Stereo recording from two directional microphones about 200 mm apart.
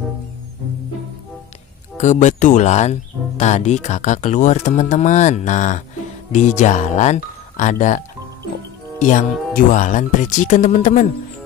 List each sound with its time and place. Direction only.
2.0 s speech: 35° left (ahead or behind)
9.0 s speech: 40° left (ahead or behind)